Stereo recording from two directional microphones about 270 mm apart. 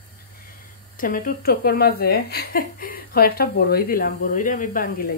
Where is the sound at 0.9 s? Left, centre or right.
Left.